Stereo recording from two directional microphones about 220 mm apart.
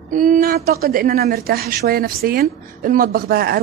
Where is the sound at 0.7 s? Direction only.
45° right (ahead or behind).